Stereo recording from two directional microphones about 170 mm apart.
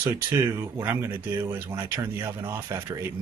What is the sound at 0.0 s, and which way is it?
A man's voice, 15° right (ahead or behind).